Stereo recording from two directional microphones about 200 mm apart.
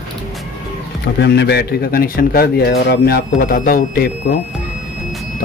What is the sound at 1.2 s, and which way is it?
A man's voice, 55° left (ahead or behind).